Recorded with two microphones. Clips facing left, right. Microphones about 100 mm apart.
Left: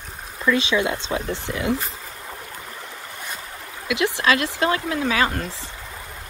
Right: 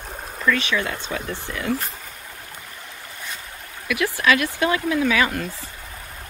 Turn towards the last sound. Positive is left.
turn(degrees=35)  # may be behind; listen again after turning